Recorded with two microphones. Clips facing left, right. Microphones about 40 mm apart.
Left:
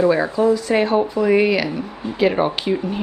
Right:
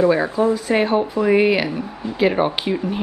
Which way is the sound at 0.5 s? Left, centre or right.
Centre.